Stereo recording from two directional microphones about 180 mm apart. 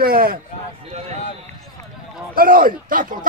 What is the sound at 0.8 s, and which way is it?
Speech, 35° right (ahead or behind).